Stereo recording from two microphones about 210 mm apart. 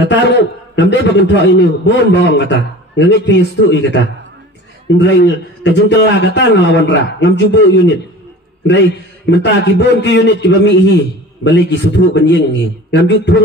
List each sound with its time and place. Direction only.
0.1 s a man's voice: 60° left (ahead or behind)
9.2 s a man's voice: 55° left (ahead or behind)